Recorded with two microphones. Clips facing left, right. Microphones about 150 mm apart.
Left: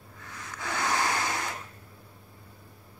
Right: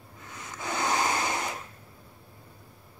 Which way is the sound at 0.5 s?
20° right (ahead or behind).